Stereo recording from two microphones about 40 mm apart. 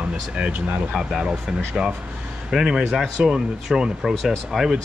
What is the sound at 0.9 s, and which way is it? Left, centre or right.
Speech, centre.